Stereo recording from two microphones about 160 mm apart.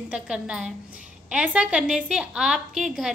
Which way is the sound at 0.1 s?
5° right (ahead or behind).